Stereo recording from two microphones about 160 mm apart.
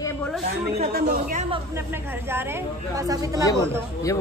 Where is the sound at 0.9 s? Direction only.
70° right (ahead or behind).